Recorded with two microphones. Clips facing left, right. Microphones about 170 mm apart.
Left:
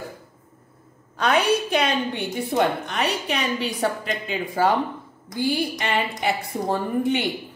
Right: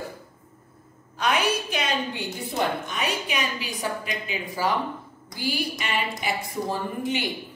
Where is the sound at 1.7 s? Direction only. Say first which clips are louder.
Left 5 dB; 60° left (ahead or behind).